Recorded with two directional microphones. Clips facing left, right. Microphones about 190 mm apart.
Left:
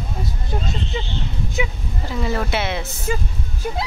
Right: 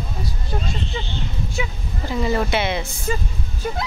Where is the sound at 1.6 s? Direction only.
20° left (ahead or behind).